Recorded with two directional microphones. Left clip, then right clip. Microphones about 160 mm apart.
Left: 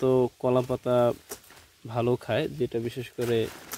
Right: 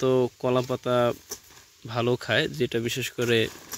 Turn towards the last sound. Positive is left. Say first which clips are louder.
# right 3 dB
turn(degrees=-15)  # may be behind; listen again after turning